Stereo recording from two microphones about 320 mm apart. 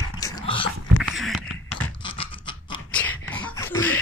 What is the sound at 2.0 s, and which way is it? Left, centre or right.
Scratch, centre.